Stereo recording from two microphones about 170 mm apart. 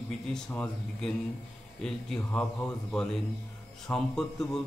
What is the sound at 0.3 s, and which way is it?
Speech, 5° left (ahead or behind).